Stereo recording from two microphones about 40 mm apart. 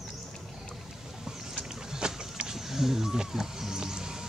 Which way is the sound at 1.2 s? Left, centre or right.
Centre.